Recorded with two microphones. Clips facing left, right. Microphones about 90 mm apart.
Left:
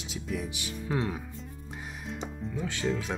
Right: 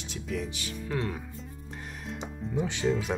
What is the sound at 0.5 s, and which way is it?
Speech, 20° left (ahead or behind).